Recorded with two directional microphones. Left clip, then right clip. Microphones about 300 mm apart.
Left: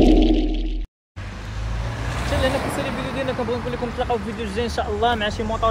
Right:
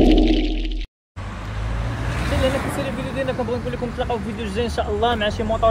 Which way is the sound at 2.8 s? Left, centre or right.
Centre.